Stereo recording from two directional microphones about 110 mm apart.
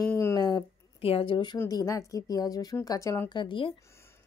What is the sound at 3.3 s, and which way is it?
Speech, 45° left (ahead or behind).